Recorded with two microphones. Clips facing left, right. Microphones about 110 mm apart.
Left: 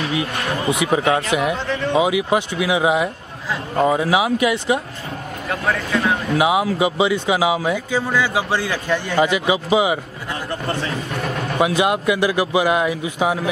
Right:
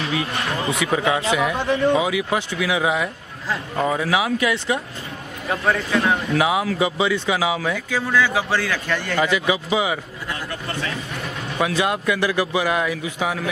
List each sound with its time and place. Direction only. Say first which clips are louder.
0.7 s speech: left 4 dB; 15° left (ahead or behind)
5.5 s speech: right 1 dB; centre (ahead or behind)
6.3 s speech: left 2 dB; 15° left (ahead or behind)
10.5 s a man's voice: left 7 dB; 30° left (ahead or behind)
11.6 s speech: left 3 dB; 15° left (ahead or behind)